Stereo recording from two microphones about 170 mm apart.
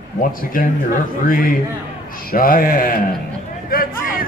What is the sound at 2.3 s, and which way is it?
Speech, 60° left (ahead or behind).